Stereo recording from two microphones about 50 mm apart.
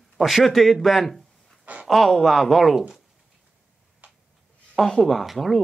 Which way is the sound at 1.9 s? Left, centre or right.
Centre.